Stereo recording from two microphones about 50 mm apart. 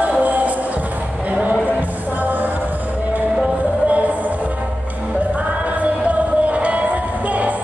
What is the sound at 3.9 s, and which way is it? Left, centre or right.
Music, right.